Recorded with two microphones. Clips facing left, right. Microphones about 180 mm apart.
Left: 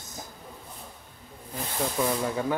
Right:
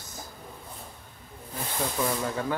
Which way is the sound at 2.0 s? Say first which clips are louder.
Left 2 dB; 10° left (ahead or behind).